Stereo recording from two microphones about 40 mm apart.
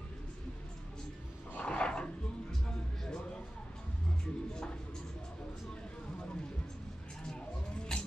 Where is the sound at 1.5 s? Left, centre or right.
Left.